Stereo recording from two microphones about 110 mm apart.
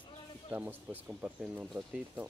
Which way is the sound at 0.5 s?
15° right (ahead or behind).